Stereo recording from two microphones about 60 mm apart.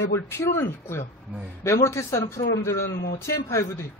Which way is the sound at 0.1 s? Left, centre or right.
Left.